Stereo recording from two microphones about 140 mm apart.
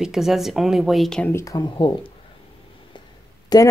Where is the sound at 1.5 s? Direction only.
30° left (ahead or behind).